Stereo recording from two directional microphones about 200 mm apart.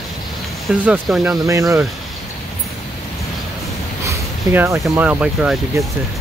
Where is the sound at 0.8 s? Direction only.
5° right (ahead or behind).